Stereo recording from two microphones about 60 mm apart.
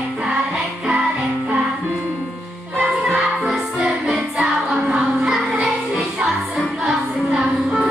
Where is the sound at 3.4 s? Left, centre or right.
Centre.